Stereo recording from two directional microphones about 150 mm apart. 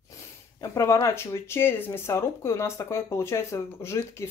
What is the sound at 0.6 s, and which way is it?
Speech, 20° left (ahead or behind).